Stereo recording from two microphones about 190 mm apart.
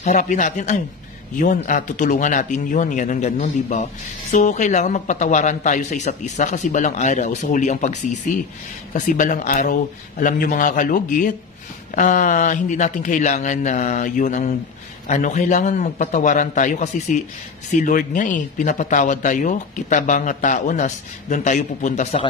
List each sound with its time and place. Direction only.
0.0 s a man's voice: 40° left (ahead or behind)